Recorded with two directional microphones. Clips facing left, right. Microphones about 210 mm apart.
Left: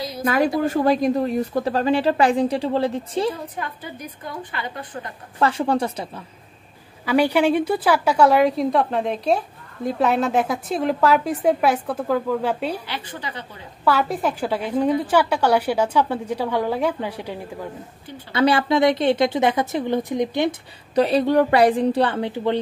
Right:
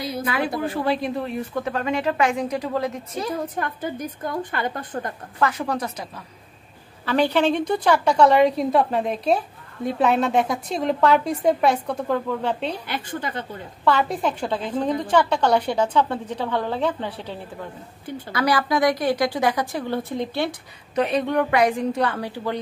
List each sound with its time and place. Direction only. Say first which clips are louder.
0.2 s a woman's voice: left 7 dB; 45° left (ahead or behind)
3.5 s a woman's voice: right 4 dB; 50° right (ahead or behind)
5.4 s a woman's voice: left 4 dB; 30° left (ahead or behind)
7.1 s a woman's voice: left 2 dB; 10° left (ahead or behind)
12.8 s a woman's voice: right 3 dB; 50° right (ahead or behind)
13.8 s a woman's voice: left 1 dB; 5° left (ahead or behind)
18.3 s a woman's voice: left 4 dB; 25° left (ahead or behind)
20.9 s a woman's voice: left 4 dB; 35° left (ahead or behind)